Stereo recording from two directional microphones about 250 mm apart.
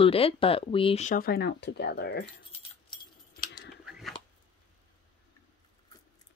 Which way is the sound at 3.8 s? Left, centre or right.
Centre.